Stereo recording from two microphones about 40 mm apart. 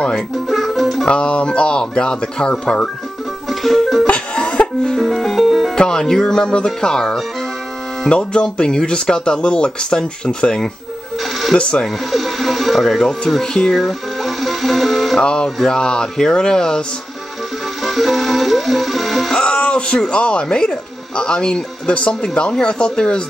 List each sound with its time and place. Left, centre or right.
0.5 s music: centre
1.0 s speech: left
3.4 s music: centre
4.1 s music: left
5.0 s music: centre
5.8 s music: centre
8.1 s speech: left
12.1 s music: centre
13.4 s music: centre
13.7 s music: centre
15.1 s speech: centre
17.8 s speech: centre
19.3 s speech: left